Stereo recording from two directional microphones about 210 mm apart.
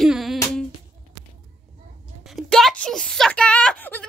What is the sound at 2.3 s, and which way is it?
Speech, centre (ahead or behind).